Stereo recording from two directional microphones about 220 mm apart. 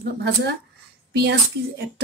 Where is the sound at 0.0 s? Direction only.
50° right (ahead or behind).